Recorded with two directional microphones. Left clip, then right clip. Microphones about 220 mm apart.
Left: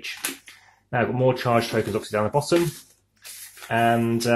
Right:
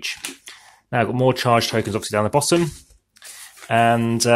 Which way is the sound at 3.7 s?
45° right (ahead or behind).